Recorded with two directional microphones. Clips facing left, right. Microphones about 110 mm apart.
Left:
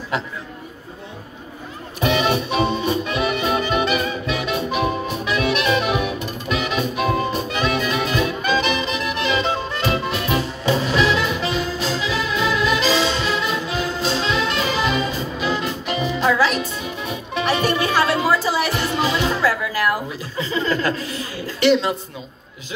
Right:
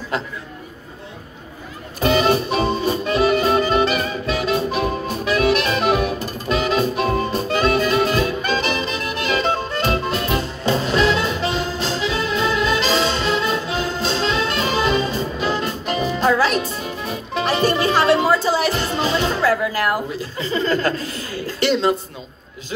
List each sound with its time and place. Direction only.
2.0 s music: 35° right (ahead or behind)